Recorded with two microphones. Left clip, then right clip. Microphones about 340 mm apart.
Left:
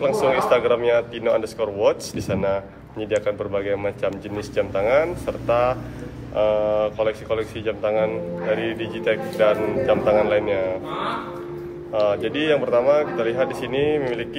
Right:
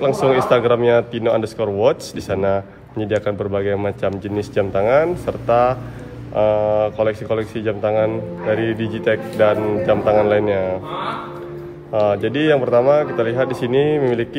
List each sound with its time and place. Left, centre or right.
0.5 s speech: right
11.9 s speech: right